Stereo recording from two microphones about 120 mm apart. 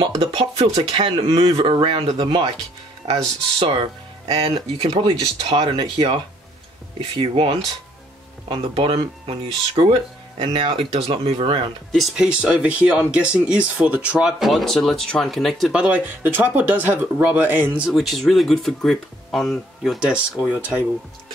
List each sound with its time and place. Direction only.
0.2 s speech: 55° right (ahead or behind)
1.0 s speech: 45° right (ahead or behind)
11.9 s speech: 5° right (ahead or behind)
15.7 s speech: 10° right (ahead or behind)
17.9 s speech: centre (ahead or behind)